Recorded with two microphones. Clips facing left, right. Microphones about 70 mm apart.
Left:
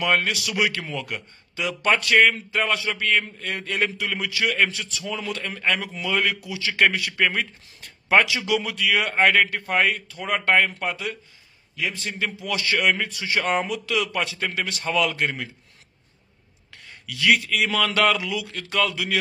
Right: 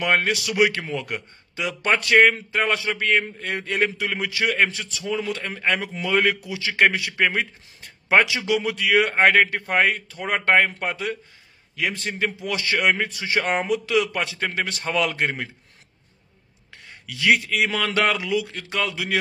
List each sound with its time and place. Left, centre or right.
0.0 s a man's voice: right
6.7 s a man's voice: right
11.7 s a man's voice: right
12.1 s a man's voice: right
17.0 s a man's voice: right